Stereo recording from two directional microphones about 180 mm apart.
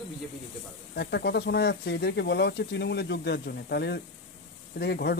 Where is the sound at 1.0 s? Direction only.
65° left (ahead or behind).